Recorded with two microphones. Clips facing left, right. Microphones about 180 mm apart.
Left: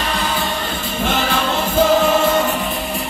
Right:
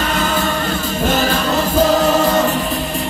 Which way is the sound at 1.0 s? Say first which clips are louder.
Right 2 dB; 40° right (ahead or behind).